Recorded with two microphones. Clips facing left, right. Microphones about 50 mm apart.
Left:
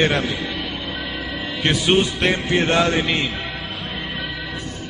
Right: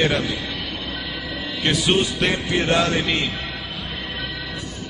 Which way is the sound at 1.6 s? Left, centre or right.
Centre.